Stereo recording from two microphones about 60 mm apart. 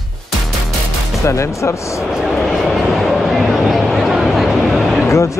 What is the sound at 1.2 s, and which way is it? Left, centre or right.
Speech, left.